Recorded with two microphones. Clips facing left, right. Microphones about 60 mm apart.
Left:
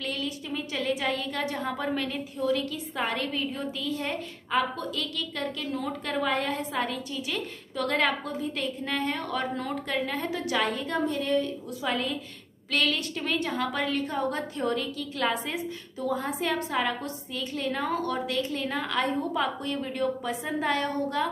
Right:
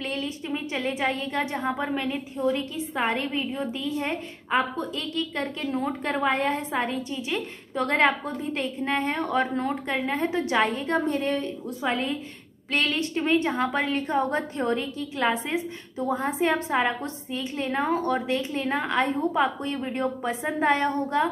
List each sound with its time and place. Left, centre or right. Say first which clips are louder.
0.0 s a sound: right 2 dB; right
1.6 s a woman's voice: right 2 dB; centre
11.1 s a woman's voice: right 3 dB; right
11.3 s a woman's voice: left 2 dB; right